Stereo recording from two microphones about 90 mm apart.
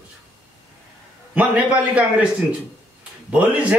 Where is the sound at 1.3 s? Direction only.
15° right (ahead or behind).